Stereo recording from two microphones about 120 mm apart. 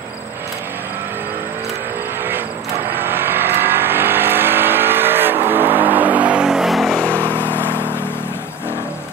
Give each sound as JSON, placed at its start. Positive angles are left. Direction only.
{"t": 3.0, "sound": "vehicle", "side_deg": -20}
{"t": 7.1, "sound": "vehicle", "side_deg": 15}